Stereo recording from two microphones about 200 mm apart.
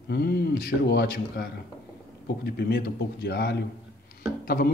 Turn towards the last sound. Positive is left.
turn(degrees=45)  # may be behind; listen again after turning